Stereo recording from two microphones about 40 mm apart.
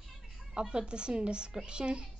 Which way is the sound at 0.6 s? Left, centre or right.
Right.